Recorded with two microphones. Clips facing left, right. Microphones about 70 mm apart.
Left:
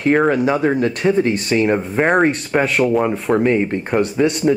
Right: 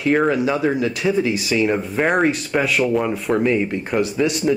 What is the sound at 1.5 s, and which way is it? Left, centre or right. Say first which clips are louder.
Speech: left 2 dB; left.